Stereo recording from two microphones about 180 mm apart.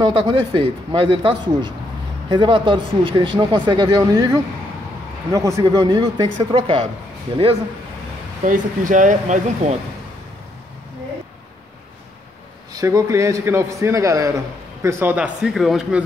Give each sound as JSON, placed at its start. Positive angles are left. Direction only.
{"t": 0.0, "sound": "speech", "side_deg": -25}
{"t": 8.5, "sound": "speech", "side_deg": -45}
{"t": 12.7, "sound": "a man's voice", "side_deg": -20}